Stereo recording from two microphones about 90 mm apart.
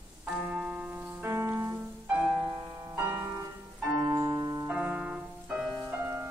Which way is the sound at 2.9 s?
20° right (ahead or behind).